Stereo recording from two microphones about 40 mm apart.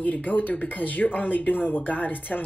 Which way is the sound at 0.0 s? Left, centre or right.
Left.